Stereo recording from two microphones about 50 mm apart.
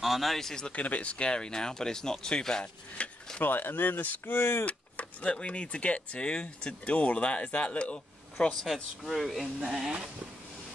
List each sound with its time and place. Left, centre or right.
0.0 s speech: centre
0.7 s speech: left
3.3 s speech: left
4.6 s vehicle: left
5.3 s speech: left
9.1 s speech: centre